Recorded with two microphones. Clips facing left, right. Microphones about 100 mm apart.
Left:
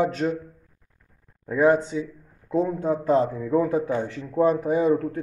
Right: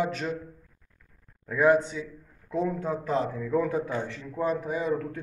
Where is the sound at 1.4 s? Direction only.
30° left (ahead or behind).